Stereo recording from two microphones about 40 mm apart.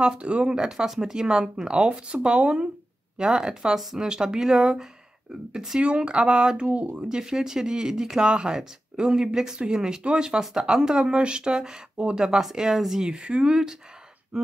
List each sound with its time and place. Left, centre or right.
0.2 s speech: right
5.8 s speech: right